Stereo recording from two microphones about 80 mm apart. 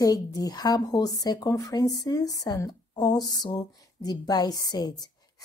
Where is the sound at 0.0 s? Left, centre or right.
Left.